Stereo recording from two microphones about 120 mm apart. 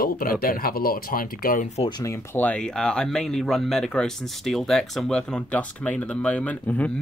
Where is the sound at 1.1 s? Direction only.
90° left.